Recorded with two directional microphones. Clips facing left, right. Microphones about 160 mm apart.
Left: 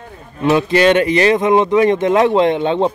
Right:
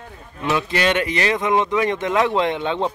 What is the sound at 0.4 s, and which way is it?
Speech, 30° left (ahead or behind).